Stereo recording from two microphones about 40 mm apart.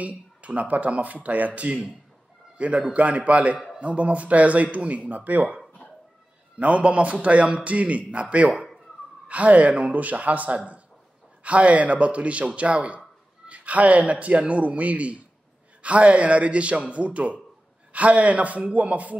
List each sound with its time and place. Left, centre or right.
0.0 s speech: right
6.6 s speech: right